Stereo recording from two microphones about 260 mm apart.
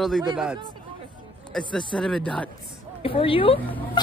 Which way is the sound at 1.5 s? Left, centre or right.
Centre.